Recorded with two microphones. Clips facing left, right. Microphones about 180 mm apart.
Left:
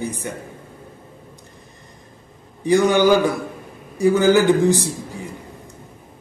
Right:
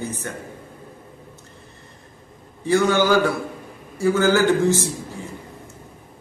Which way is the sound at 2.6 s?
15° left (ahead or behind).